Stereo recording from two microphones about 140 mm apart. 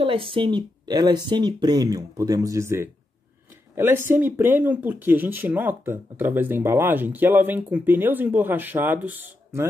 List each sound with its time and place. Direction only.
0.0 s speech: 40° right (ahead or behind); by 9.7 s 15° right (ahead or behind)